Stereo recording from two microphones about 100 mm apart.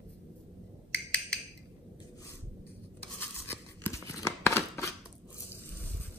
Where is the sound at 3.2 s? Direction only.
20° left (ahead or behind).